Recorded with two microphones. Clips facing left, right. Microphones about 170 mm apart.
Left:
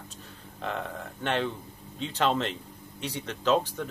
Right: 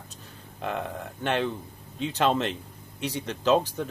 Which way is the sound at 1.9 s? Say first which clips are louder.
Right 2 dB; 15° right (ahead or behind).